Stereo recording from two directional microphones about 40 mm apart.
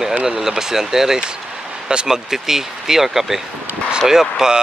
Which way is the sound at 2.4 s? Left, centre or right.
Centre.